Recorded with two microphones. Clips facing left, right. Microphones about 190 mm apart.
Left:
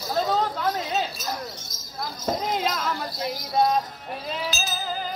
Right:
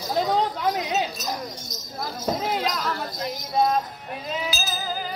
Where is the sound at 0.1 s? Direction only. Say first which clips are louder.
Right 1 dB; 15° right (ahead or behind).